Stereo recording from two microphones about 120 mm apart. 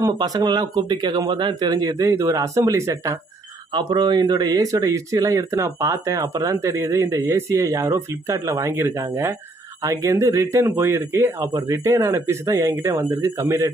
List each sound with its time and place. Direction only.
0.0 s speech: 30° right (ahead or behind)
3.7 s speech: 35° right (ahead or behind)